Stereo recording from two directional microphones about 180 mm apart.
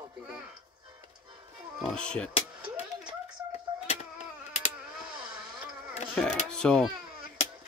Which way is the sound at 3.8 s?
35° left (ahead or behind).